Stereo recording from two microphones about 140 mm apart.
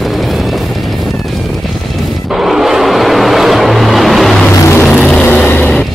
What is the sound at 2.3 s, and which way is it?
Vehicle, centre (ahead or behind).